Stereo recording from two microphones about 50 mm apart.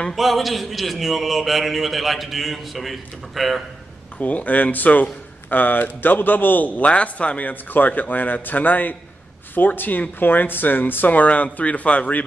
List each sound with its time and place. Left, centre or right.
0.1 s a man's voice: centre
4.2 s speech: left
6.8 s speech: left